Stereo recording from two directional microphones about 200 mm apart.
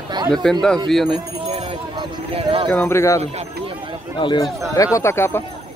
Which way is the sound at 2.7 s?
10° left (ahead or behind).